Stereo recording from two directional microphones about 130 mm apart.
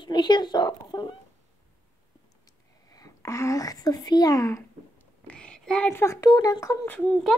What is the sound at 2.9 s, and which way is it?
Speech, 25° left (ahead or behind).